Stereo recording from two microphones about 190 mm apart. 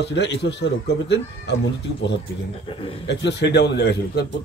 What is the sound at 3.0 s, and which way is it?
A man's voice, 65° left (ahead or behind).